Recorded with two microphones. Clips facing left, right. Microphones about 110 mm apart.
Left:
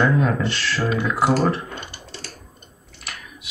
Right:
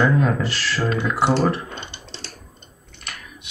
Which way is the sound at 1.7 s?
25° right (ahead or behind).